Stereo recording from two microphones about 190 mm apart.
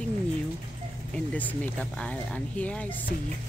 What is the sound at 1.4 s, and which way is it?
Speech, 10° left (ahead or behind).